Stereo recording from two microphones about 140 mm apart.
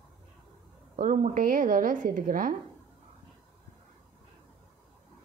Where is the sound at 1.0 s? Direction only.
70° right (ahead or behind).